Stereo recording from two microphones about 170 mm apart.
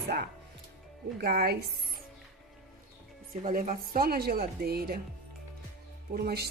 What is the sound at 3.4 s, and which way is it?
Speech, 55° right (ahead or behind).